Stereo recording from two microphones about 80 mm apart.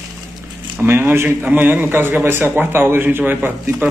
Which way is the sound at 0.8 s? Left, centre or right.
Right.